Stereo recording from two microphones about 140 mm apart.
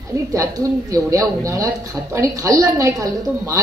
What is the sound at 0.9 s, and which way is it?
A woman's voice, 25° right (ahead or behind).